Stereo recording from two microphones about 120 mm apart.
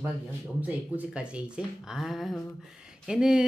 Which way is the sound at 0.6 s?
10° right (ahead or behind).